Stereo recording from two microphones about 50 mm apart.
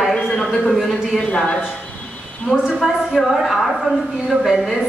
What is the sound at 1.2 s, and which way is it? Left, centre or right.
Speech, centre.